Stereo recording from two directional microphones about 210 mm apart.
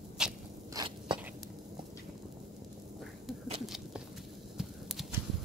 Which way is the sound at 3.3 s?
Centre (ahead or behind).